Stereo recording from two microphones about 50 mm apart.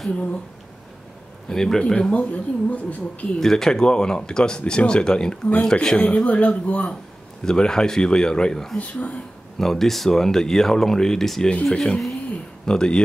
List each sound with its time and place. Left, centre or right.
1.5 s speech: centre
2.1 s speech: left
3.3 s speech: centre
6.2 s speech: left
7.4 s speech: centre
8.7 s speech: left
9.6 s speech: centre